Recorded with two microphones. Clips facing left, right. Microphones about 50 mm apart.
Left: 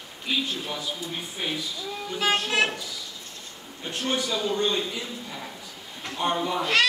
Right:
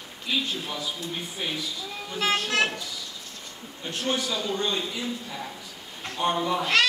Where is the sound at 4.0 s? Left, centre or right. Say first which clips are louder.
Left 1 dB; centre.